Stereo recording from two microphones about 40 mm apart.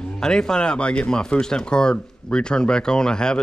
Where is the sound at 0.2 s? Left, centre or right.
Centre.